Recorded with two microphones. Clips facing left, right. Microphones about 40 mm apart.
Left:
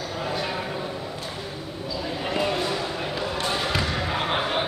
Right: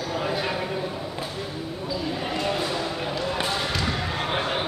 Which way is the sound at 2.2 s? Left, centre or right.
Centre.